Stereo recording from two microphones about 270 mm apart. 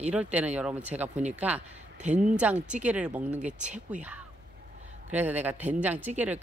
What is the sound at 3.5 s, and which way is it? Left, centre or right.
Speech, right.